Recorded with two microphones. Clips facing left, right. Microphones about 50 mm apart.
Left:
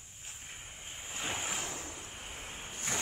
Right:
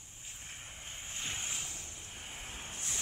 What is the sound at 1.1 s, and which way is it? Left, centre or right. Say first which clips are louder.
Waves: left 5 dB; centre.